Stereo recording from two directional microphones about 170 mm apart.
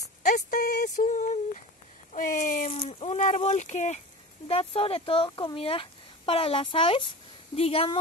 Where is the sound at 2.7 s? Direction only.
35° left (ahead or behind).